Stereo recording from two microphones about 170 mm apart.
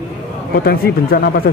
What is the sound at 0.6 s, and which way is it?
Speech, 60° left (ahead or behind).